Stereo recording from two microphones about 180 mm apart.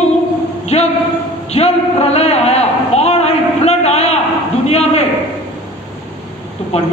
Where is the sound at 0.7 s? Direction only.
35° left (ahead or behind).